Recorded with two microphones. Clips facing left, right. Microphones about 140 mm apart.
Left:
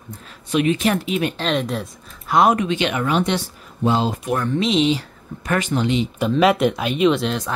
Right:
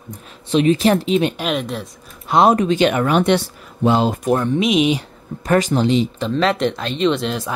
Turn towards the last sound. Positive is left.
turn(degrees=0)  # may be behind; listen again after turning